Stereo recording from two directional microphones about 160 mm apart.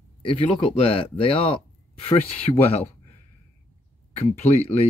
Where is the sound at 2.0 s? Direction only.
35° left (ahead or behind).